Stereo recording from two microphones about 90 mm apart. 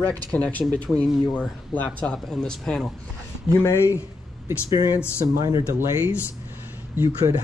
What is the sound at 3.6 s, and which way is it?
Speech, 30° left (ahead or behind).